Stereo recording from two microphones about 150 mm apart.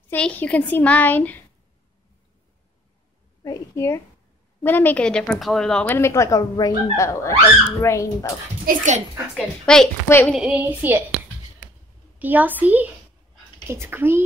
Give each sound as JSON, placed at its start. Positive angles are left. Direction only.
{"t": 0.1, "sound": "a woman's voice", "side_deg": 10}
{"t": 3.4, "sound": "a woman's voice", "side_deg": 20}
{"t": 5.9, "sound": "speech", "side_deg": 15}
{"t": 8.6, "sound": "speech", "side_deg": -55}
{"t": 9.3, "sound": "a woman's voice", "side_deg": 5}
{"t": 10.0, "sound": "a woman's voice", "side_deg": 15}
{"t": 10.3, "sound": "a woman's voice", "side_deg": -10}
{"t": 12.2, "sound": "a woman's voice", "side_deg": -10}